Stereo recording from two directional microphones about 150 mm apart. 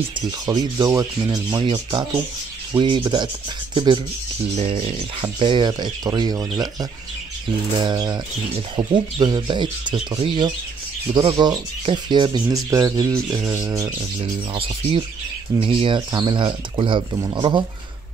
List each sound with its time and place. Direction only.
0.5 s rub: 25° right (ahead or behind)
2.8 s speech: 30° right (ahead or behind)
3.7 s rub: 30° right (ahead or behind)
4.6 s speech: 40° right (ahead or behind)
6.5 s rub: 25° right (ahead or behind)
8.7 s speech: 30° right (ahead or behind)
11.1 s rub: 30° right (ahead or behind)
14.5 s speech: 35° right (ahead or behind)